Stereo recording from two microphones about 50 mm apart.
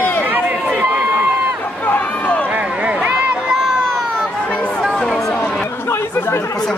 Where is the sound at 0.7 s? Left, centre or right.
Right.